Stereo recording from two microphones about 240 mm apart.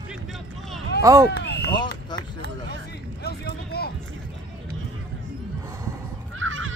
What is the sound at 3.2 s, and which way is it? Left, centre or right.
Vehicle, left.